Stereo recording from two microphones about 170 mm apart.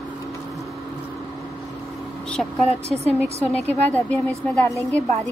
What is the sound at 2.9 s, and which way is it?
Speech, 40° right (ahead or behind).